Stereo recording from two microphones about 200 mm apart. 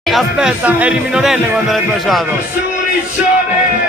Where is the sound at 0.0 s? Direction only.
Centre (ahead or behind).